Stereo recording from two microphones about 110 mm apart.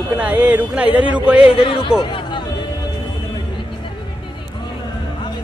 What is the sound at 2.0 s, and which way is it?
Music, 45° left (ahead or behind).